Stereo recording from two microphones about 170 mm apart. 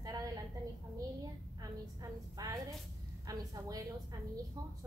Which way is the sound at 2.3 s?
20° right (ahead or behind).